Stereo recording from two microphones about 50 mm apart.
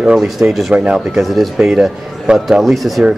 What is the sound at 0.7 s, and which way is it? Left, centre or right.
Speech, right.